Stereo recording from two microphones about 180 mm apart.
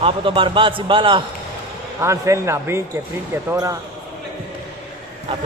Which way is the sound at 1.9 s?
15° right (ahead or behind).